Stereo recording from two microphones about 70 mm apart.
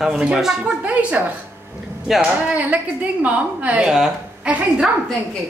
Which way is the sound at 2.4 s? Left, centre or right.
Right.